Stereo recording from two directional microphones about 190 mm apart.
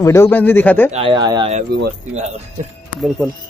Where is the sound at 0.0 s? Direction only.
15° left (ahead or behind).